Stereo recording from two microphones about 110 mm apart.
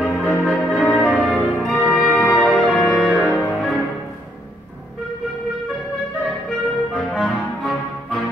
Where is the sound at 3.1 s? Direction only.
Centre (ahead or behind).